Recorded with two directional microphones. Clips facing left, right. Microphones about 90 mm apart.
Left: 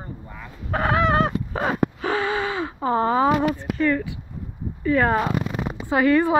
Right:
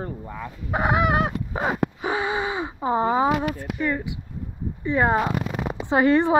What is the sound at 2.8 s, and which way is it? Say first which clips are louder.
Speech: left 1 dB; 15° right (ahead or behind).